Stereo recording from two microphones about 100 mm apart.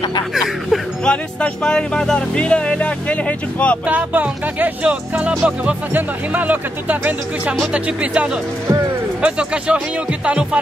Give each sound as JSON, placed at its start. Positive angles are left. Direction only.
{"t": 0.3, "sound": "speech", "side_deg": 0}
{"t": 3.8, "sound": "speech", "side_deg": -15}